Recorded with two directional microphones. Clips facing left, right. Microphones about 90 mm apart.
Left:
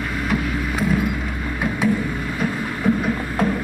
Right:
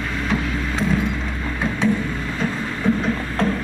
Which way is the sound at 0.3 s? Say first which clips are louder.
Left 1 dB; 10° left (ahead or behind).